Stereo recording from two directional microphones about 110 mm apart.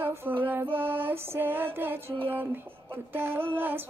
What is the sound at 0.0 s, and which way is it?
Music, 20° right (ahead or behind).